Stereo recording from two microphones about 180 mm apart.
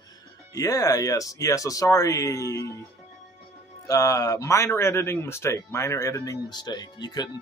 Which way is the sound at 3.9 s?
20° left (ahead or behind).